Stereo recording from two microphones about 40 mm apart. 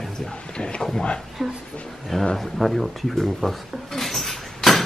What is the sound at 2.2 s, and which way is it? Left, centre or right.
Speech, centre.